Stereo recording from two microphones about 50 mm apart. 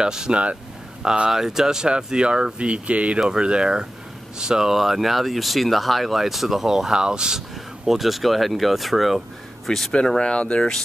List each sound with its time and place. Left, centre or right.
0.0 s speech: centre
9.9 s speech: centre